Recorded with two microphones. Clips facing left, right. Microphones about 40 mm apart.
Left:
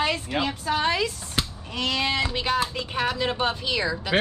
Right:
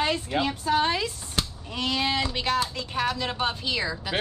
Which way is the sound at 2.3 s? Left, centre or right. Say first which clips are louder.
Left 1 dB; centre.